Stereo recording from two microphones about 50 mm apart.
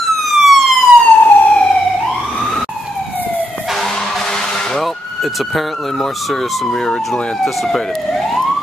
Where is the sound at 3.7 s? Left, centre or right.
Centre.